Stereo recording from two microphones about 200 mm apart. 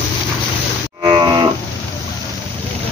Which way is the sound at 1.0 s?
20° right (ahead or behind).